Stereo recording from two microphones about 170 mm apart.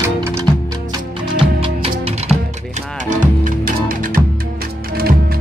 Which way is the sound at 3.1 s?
50° right (ahead or behind).